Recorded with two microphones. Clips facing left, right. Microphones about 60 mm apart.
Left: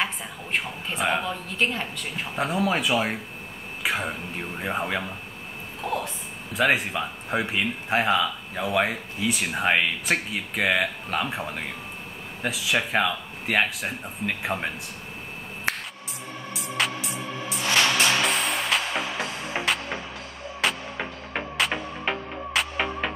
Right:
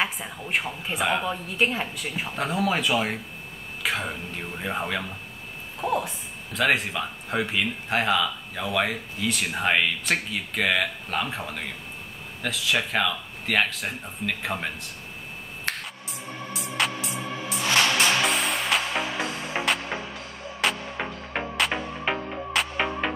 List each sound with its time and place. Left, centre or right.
0.0 s a woman's voice: centre
5.8 s speech: centre
6.5 s a woman's voice: centre
15.7 s music: centre
16.5 s music: centre
20.6 s music: centre